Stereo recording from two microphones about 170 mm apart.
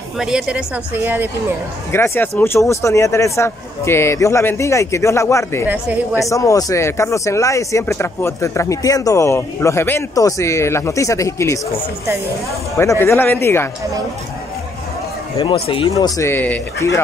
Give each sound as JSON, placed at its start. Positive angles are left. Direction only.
{"t": 0.2, "sound": "a woman's voice", "side_deg": -5}
{"t": 1.9, "sound": "speech", "side_deg": 15}
{"t": 12.7, "sound": "speech", "side_deg": 15}
{"t": 15.3, "sound": "speech", "side_deg": 30}
{"t": 16.0, "sound": "speech", "side_deg": 15}